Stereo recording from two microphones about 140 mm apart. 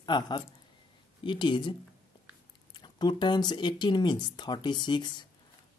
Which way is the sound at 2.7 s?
30° left (ahead or behind).